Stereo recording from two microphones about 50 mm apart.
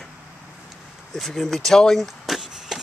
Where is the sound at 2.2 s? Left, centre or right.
Centre.